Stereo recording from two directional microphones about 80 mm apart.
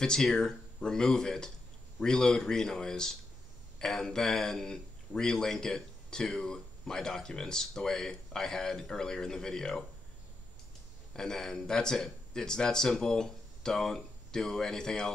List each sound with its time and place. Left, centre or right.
0.0 s a man's voice: centre
11.1 s a man's voice: centre